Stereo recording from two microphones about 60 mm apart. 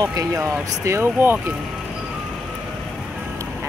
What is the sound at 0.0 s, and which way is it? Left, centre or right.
Speech, right.